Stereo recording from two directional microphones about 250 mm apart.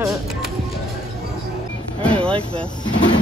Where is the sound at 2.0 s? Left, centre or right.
Centre.